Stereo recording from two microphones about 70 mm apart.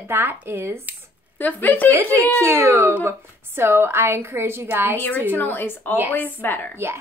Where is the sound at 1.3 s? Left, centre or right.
Left.